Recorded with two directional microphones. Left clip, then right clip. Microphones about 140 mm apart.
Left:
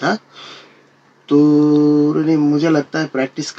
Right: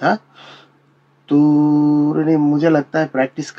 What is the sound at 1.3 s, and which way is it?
Speech, 30° right (ahead or behind).